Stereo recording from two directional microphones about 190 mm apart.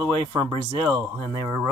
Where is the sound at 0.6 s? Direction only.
20° right (ahead or behind).